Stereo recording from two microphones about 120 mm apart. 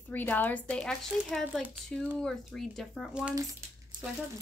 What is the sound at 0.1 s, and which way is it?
Speech, 15° left (ahead or behind).